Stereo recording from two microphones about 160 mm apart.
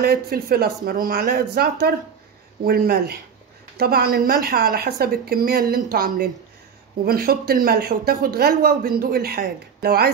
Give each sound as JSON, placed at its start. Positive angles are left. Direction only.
{"t": 0.0, "sound": "speech", "side_deg": -70}